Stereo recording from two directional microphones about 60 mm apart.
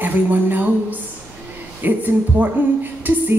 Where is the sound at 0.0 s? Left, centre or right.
Right.